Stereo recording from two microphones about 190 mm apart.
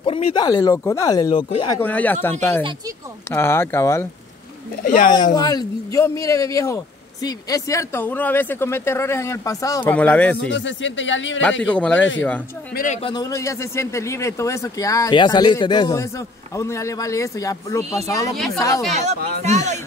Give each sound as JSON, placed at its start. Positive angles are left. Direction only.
{"t": 0.0, "sound": "speech", "side_deg": 25}
{"t": 1.8, "sound": "speech", "side_deg": 10}
{"t": 3.3, "sound": "speech", "side_deg": 10}
{"t": 4.8, "sound": "speech", "side_deg": 45}
{"t": 5.1, "sound": "speech", "side_deg": 20}
{"t": 10.5, "sound": "speech", "side_deg": 75}
{"t": 11.6, "sound": "speech", "side_deg": 5}
{"t": 12.7, "sound": "speech", "side_deg": 40}
{"t": 13.0, "sound": "speech", "side_deg": 20}
{"t": 18.3, "sound": "speech", "side_deg": 0}
{"t": 19.4, "sound": "speech", "side_deg": -40}